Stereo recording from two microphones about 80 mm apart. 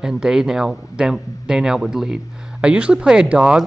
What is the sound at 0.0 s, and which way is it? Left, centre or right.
Speech, centre.